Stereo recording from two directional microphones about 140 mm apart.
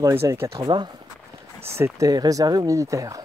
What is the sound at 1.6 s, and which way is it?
Speech, 20° right (ahead or behind).